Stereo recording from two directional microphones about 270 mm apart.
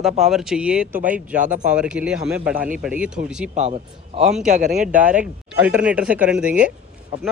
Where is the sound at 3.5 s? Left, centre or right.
Right.